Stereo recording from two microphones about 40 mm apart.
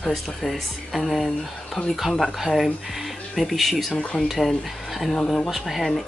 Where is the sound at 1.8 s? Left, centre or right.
Left.